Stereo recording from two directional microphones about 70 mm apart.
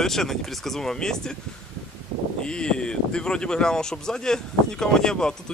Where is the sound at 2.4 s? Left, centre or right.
Centre.